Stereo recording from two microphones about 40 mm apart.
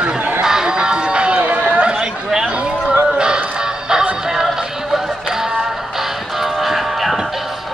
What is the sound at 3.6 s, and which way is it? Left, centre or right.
Music, centre.